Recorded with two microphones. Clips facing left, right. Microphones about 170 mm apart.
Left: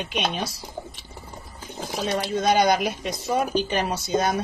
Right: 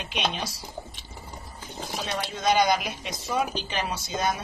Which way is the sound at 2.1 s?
45° left (ahead or behind).